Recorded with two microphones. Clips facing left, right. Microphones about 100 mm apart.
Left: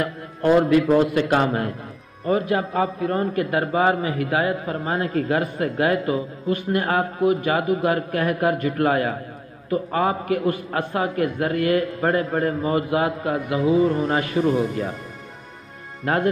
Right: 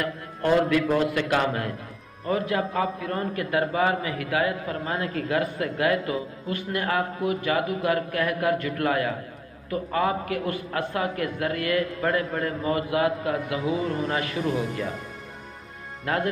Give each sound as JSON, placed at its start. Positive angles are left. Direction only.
{"t": 0.0, "sound": "a man's voice", "side_deg": 25}
{"t": 16.1, "sound": "a man's voice", "side_deg": 35}